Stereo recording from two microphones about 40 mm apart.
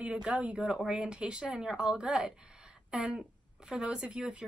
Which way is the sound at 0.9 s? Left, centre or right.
Right.